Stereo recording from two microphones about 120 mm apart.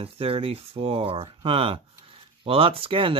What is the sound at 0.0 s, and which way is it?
Speech, 50° right (ahead or behind).